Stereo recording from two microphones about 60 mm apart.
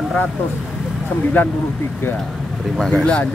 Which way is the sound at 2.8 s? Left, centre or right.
Centre.